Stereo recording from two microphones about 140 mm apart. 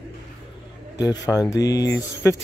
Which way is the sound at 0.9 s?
25° left (ahead or behind).